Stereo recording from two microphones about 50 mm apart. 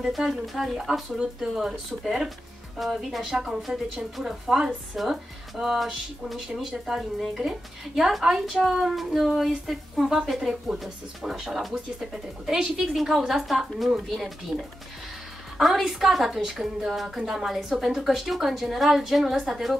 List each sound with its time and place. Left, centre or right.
0.0 s a woman's voice: centre
14.5 s speech: right
15.5 s a woman's voice: centre